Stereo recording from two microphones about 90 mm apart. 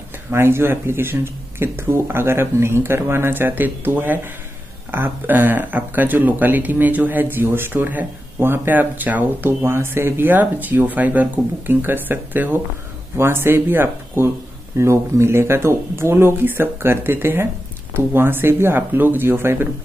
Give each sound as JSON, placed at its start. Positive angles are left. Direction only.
{"t": 0.3, "sound": "speech", "side_deg": -25}